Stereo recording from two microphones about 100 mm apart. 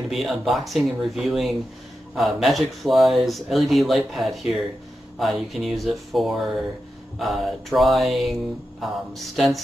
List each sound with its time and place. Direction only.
0.1 s speech: centre (ahead or behind)